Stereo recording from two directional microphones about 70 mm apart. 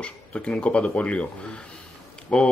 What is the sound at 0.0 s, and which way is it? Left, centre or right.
Speech, centre.